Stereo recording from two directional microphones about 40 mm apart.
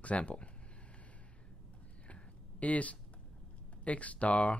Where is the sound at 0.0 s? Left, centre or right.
Left.